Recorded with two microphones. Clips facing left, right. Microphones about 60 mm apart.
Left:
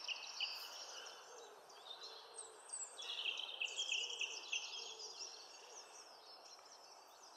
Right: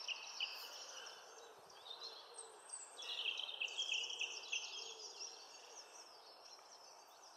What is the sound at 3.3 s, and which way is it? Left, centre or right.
Bird vocalization, centre.